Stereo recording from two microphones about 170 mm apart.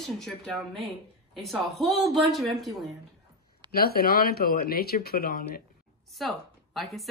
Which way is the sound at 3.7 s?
65° left (ahead or behind).